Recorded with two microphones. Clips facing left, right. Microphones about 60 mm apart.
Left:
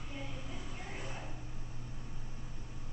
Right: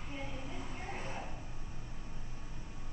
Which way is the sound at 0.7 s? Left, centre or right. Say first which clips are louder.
Right 3 dB; right.